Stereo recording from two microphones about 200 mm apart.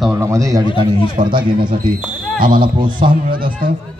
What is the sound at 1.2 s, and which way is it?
Speech, 35° right (ahead or behind).